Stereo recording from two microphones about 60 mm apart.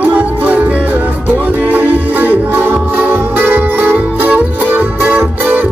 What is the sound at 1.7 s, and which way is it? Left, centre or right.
Music, right.